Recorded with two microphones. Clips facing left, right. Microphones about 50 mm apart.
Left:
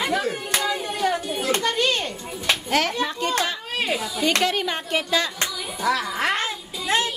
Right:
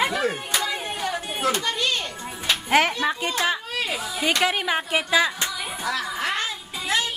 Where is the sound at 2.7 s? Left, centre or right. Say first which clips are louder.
Right 5 dB; right.